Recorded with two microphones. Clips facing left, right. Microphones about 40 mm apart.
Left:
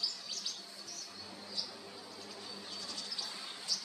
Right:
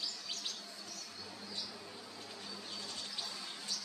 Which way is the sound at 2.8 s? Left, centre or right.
Right.